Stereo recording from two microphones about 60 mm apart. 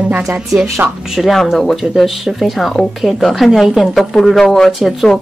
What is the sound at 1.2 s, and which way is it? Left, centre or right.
A woman's voice, centre.